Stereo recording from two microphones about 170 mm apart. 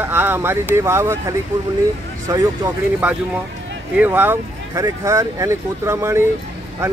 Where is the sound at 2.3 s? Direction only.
20° right (ahead or behind).